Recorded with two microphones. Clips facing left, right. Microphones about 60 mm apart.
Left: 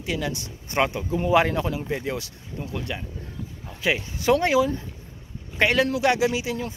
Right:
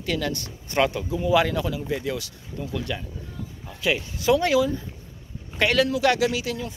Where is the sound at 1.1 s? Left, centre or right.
Left.